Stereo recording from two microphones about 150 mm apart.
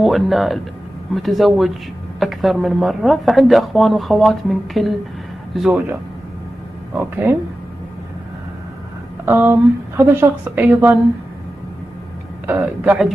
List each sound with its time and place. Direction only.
0.0 s speech: centre (ahead or behind)
7.0 s a woman's voice: 10° right (ahead or behind)
9.2 s a woman's voice: 20° right (ahead or behind)
12.4 s a woman's voice: 10° right (ahead or behind)